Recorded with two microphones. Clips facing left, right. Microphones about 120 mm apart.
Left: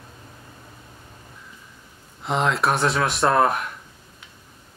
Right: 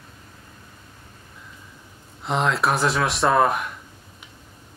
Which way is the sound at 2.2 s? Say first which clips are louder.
Even; centre (ahead or behind).